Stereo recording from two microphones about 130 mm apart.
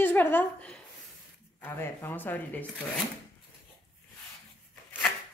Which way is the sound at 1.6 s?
15° left (ahead or behind).